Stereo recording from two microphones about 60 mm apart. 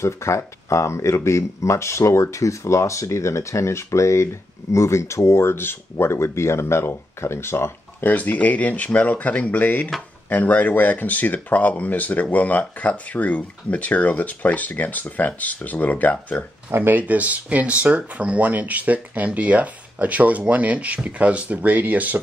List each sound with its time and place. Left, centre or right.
0.0 s speech: left
8.0 s speech: left
16.7 s speech: right